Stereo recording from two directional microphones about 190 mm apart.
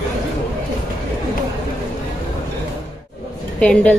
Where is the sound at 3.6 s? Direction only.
5° left (ahead or behind).